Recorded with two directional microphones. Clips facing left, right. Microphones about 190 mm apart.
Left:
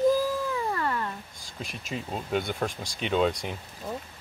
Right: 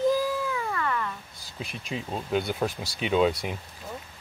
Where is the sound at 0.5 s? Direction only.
35° left (ahead or behind).